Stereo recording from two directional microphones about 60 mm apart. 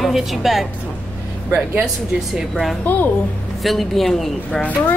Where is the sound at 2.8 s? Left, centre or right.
Left.